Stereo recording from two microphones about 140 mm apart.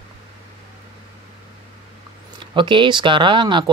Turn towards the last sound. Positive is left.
turn(degrees=-35)  # may be behind; listen again after turning